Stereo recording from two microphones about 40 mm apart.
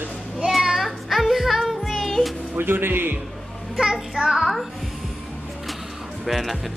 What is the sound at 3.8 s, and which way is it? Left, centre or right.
Child singing, centre.